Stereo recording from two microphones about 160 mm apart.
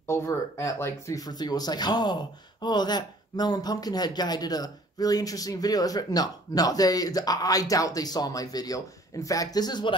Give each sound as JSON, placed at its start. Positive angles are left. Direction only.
{"t": 0.0, "sound": "speech", "side_deg": 15}